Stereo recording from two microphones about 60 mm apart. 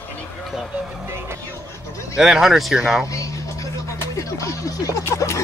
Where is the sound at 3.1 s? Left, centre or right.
Left.